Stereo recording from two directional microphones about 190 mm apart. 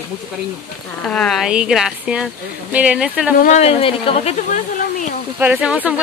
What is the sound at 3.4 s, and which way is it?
Speech, 35° left (ahead or behind).